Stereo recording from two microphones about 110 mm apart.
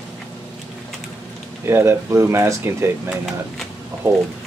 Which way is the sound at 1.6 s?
20° right (ahead or behind).